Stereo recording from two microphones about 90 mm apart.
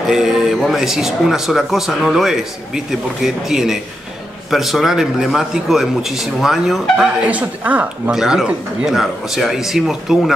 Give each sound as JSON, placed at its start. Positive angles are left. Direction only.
{"t": 0.1, "sound": "a man's voice", "side_deg": -5}
{"t": 7.2, "sound": "speech", "side_deg": -15}
{"t": 8.1, "sound": "a man's voice", "side_deg": -5}